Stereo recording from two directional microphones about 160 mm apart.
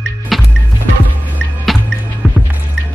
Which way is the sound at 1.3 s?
Centre (ahead or behind).